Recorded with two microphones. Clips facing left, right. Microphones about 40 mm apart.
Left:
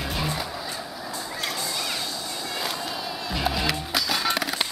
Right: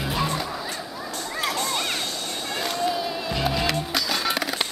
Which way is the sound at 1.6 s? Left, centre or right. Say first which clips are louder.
Right 3 dB; right.